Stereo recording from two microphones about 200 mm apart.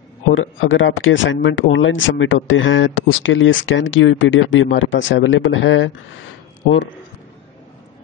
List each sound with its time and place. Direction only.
0.3 s speech: 75° left (ahead or behind)